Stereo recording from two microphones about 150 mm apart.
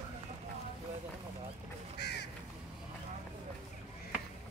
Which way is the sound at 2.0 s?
90° left.